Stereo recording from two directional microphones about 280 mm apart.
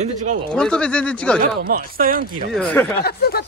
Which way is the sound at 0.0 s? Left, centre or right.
Right.